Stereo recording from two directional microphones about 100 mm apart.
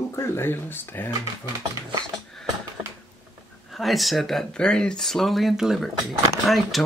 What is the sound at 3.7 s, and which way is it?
Speech, centre (ahead or behind).